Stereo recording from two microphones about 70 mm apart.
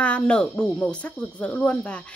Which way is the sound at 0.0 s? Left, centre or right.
Centre.